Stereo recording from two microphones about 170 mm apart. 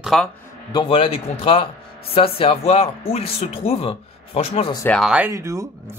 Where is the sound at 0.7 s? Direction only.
30° left (ahead or behind).